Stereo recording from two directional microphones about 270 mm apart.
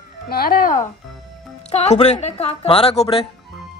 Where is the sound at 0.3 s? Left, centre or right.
Left.